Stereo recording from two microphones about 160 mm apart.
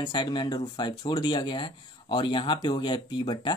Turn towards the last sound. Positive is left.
turn(degrees=30)  # may be behind; listen again after turning